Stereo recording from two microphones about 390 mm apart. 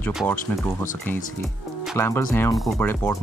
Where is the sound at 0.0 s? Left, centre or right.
Centre.